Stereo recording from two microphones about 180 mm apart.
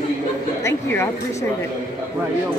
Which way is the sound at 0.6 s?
15° left (ahead or behind).